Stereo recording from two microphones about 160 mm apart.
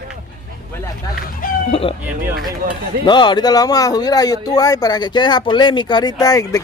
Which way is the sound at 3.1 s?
30° left (ahead or behind).